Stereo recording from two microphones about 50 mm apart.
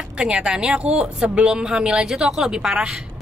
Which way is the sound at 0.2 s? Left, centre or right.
Centre.